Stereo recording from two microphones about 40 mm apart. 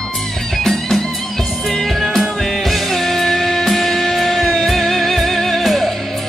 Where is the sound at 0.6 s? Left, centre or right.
Centre.